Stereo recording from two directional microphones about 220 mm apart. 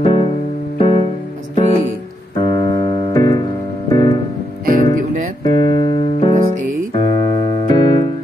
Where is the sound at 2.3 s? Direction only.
20° left (ahead or behind).